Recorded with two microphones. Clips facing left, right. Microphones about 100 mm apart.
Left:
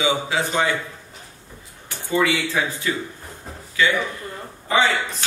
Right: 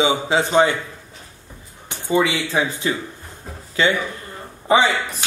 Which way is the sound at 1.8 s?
20° right (ahead or behind).